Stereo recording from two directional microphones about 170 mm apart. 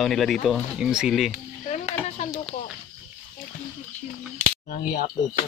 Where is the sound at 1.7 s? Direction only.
40° left (ahead or behind).